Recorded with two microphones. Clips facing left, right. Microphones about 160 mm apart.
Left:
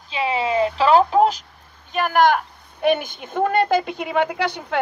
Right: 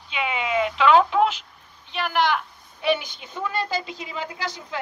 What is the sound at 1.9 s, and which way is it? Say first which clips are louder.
A woman's voice: left 6 dB; 45° left (ahead or behind).